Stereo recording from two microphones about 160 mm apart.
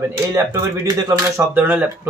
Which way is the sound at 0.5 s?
20° right (ahead or behind).